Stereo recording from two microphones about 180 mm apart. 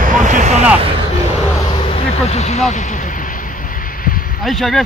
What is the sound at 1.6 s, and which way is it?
Vehicle, 30° left (ahead or behind).